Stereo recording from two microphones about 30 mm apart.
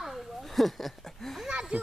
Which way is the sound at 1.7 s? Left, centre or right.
Right.